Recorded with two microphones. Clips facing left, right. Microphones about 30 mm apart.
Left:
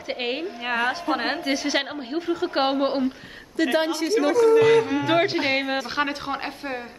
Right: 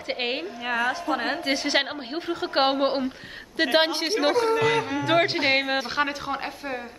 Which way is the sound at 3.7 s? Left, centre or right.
Right.